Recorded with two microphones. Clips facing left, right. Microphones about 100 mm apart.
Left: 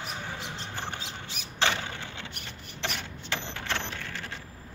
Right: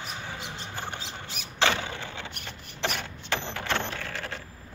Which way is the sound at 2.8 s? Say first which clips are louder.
Right 4 dB; 50° right (ahead or behind).